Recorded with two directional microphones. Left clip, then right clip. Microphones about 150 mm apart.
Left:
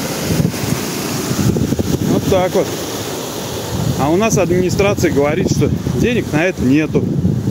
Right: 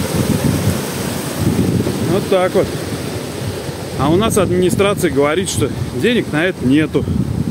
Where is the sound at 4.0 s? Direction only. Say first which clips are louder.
Even; 10° left (ahead or behind).